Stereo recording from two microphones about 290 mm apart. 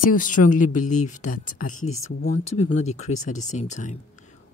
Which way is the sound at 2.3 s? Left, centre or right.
Left.